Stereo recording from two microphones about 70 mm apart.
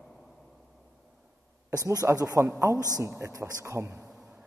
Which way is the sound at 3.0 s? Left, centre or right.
Right.